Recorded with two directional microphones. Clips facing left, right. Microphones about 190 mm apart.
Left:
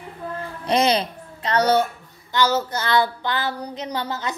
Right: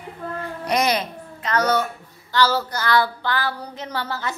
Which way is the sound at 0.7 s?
25° left (ahead or behind).